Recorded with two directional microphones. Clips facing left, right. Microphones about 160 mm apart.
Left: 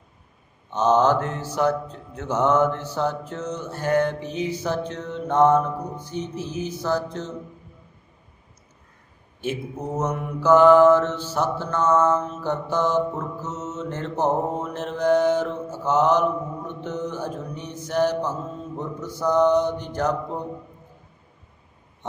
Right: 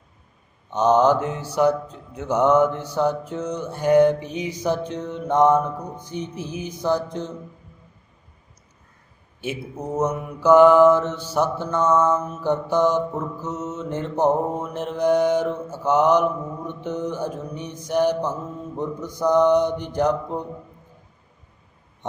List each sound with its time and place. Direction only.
0.7 s mantra: 15° right (ahead or behind)
9.4 s mantra: 10° right (ahead or behind)